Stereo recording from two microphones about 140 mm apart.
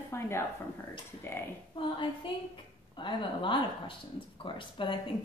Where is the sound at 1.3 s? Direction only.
15° left (ahead or behind).